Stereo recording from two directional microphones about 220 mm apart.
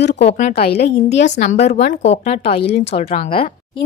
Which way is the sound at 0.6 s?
45° left (ahead or behind).